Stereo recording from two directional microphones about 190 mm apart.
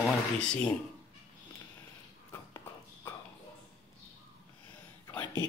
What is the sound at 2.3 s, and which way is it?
Horse, 15° left (ahead or behind).